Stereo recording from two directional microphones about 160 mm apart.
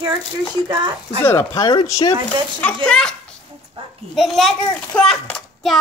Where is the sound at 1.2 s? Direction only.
20° left (ahead or behind).